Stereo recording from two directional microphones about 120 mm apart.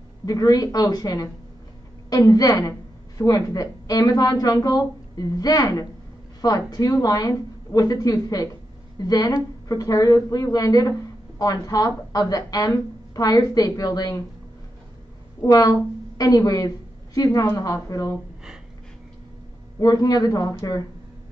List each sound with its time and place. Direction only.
0.2 s a woman's voice: 30° left (ahead or behind)
15.4 s a woman's voice: 30° left (ahead or behind)
19.8 s a woman's voice: 30° left (ahead or behind)